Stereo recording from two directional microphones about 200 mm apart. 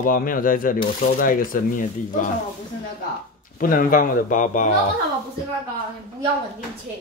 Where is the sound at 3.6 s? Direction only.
45° left (ahead or behind).